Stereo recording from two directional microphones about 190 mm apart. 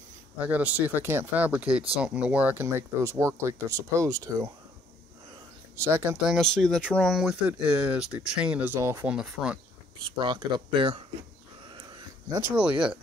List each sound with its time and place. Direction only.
0.4 s speech: 10° right (ahead or behind)
5.8 s speech: 10° right (ahead or behind)
6.3 s speech: centre (ahead or behind)
10.1 s speech: 25° right (ahead or behind)
12.4 s speech: 10° right (ahead or behind)